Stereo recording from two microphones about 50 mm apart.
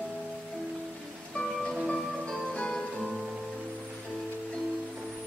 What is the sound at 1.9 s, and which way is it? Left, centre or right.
Music, centre.